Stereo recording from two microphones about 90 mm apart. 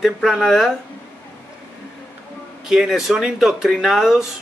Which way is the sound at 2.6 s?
5° right (ahead or behind).